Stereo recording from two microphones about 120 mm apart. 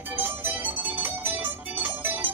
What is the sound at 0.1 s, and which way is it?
Music, 20° right (ahead or behind).